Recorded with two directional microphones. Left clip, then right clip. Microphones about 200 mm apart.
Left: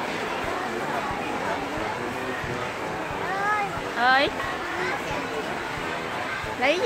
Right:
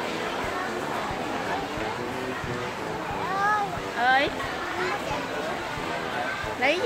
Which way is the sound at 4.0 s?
15° left (ahead or behind).